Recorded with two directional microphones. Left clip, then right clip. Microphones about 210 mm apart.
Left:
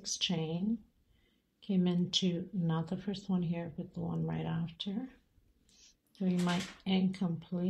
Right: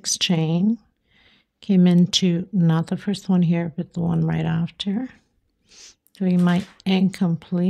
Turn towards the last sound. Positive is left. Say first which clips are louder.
# right 13 dB
turn(degrees=-50)  # may be behind; listen again after turning